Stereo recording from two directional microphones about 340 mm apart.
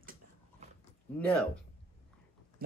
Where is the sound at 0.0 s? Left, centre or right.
Right.